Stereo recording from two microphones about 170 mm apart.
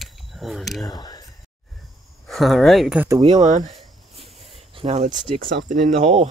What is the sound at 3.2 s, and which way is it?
Speech, 40° right (ahead or behind).